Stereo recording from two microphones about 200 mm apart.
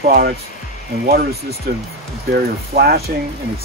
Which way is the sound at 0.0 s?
50° right (ahead or behind).